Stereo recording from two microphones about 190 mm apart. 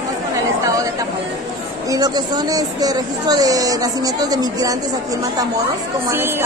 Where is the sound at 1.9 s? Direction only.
20° right (ahead or behind).